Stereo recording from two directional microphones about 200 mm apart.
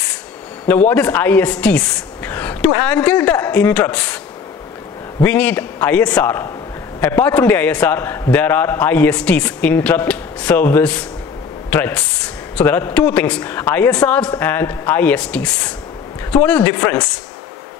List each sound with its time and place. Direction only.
0.7 s a man's voice: 10° left (ahead or behind)
5.2 s a man's voice: 5° left (ahead or behind)